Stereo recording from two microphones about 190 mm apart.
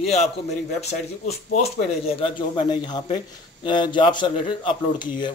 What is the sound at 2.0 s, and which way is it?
A man's voice, 30° left (ahead or behind).